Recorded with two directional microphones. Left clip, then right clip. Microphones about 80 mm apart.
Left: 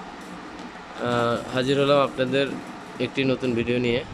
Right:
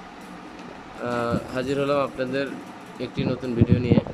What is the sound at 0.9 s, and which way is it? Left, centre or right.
Speech, centre.